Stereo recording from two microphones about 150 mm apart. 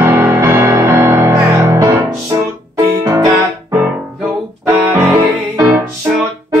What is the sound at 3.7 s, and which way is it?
Music, centre (ahead or behind).